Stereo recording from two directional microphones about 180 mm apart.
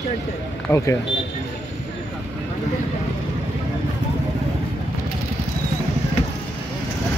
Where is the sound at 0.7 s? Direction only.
15° left (ahead or behind).